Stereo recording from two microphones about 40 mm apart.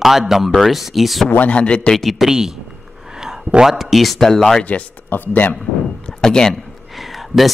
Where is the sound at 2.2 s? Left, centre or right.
Centre.